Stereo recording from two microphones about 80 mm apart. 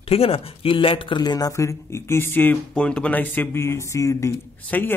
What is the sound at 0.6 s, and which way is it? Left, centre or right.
Speech, left.